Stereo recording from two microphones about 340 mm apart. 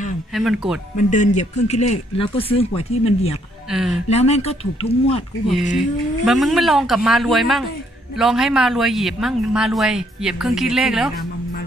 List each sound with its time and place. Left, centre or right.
0.3 s a woman's voice: centre
0.9 s speech: left
3.7 s a woman's voice: centre
4.1 s speech: centre
5.8 s a woman's voice: centre